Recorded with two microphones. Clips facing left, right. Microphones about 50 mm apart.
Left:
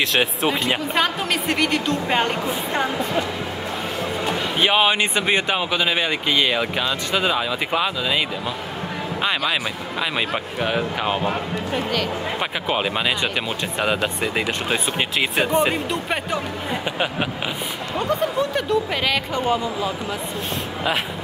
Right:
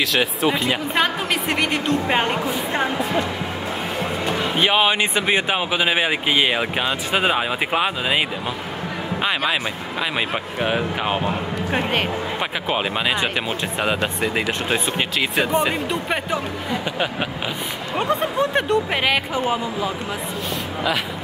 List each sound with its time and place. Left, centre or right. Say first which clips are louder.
0.9 s a woman's voice: right 1 dB; centre
4.6 s speech: even; centre; by 8.2 s right
9.5 s speech: right 1 dB; centre
11.7 s speech: right 2 dB; right
12.4 s speech: left 1 dB; centre
15.1 s speech: even; left
17.9 s speech: right 1 dB; right
18.9 s a woman's voice: right 2 dB; centre
19.3 s speech: even; centre